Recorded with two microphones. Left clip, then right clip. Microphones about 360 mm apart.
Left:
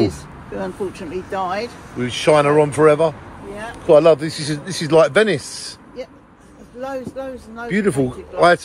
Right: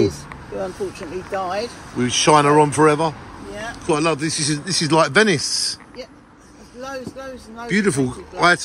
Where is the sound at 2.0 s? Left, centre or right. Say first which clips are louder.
Even; centre.